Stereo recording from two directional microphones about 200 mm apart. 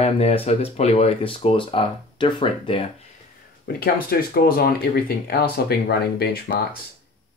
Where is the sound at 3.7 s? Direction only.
50° left (ahead or behind).